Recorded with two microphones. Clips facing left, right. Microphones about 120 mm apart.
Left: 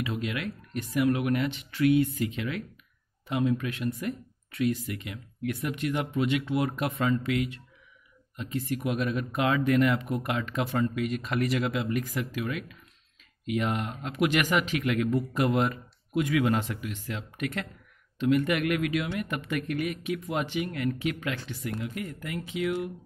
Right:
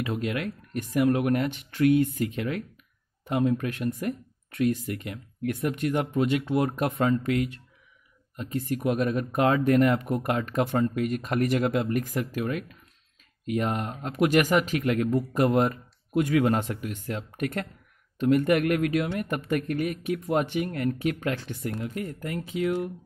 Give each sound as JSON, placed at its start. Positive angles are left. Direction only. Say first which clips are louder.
{"t": 0.0, "sound": "speech", "louder": "right 3 dB", "side_deg": -45}